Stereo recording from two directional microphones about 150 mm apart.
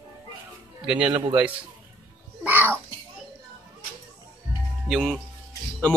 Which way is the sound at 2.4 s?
10° right (ahead or behind).